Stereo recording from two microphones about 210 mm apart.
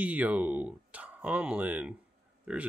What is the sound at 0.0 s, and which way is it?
Speech, 5° right (ahead or behind).